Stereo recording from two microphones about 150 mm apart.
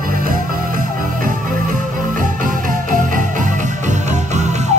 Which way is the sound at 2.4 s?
65° right (ahead or behind).